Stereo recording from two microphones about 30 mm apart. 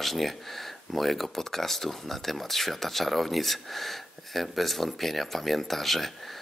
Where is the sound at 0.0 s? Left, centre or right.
Centre.